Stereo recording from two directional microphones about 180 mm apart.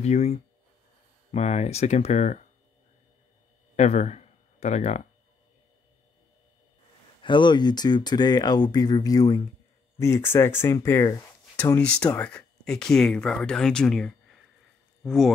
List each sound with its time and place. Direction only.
0.0 s speech: 35° left (ahead or behind)
3.7 s speech: 40° left (ahead or behind)
7.2 s speech: 25° left (ahead or behind); by 15.3 s centre (ahead or behind)